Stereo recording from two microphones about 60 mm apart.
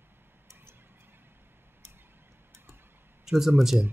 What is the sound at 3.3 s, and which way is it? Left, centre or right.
Speech, centre.